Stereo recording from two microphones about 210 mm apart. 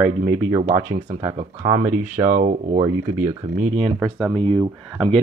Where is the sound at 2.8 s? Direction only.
20° right (ahead or behind).